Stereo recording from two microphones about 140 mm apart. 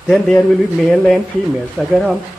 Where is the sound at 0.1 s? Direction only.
5° left (ahead or behind).